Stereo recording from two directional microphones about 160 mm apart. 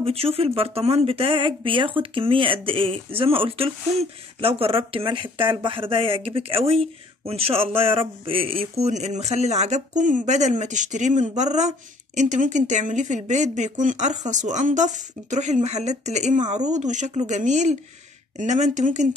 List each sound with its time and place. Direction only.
0.0 s speech: 35° right (ahead or behind)